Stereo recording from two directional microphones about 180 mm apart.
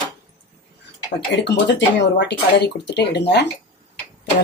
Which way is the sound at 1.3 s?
75° left (ahead or behind).